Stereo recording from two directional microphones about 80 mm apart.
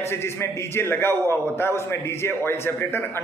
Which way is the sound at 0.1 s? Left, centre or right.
Left.